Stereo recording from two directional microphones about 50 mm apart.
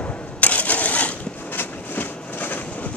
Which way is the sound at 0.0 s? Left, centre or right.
Left.